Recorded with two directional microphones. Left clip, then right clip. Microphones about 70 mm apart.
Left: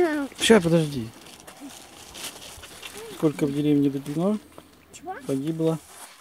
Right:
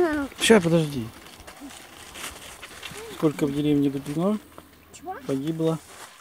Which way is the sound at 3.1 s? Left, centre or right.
Centre.